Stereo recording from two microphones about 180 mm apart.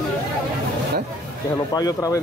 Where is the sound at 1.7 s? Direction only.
20° left (ahead or behind).